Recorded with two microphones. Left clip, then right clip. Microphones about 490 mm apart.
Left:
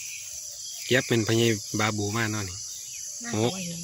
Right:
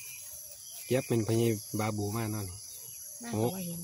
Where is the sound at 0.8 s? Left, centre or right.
Right.